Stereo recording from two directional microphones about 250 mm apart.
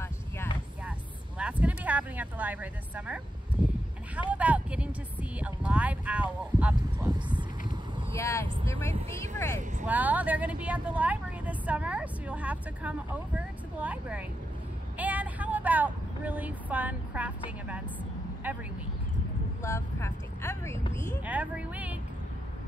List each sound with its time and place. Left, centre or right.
0.0 s vehicle: centre
1.4 s a sound: centre
4.2 s a woman's voice: centre
7.1 s speech: centre
8.2 s speech: centre
9.8 s a woman's voice: centre
19.6 s speech: centre
21.3 s a woman's voice: centre